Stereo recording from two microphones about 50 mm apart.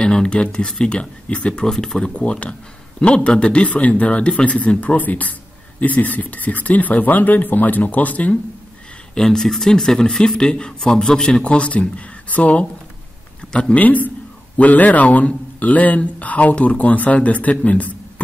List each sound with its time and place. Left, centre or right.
0.0 s speech: centre
2.0 s speech: left
9.1 s speech: centre
11.4 s speech: left
13.7 s speech: left